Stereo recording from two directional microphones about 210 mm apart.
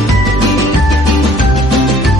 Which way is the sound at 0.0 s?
Centre (ahead or behind).